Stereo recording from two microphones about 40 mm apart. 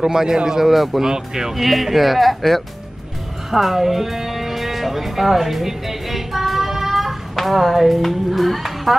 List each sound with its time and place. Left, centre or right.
0.0 s speech: centre
1.5 s music: centre